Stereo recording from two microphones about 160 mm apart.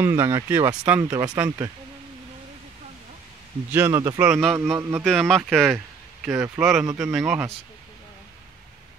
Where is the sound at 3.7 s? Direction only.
15° right (ahead or behind).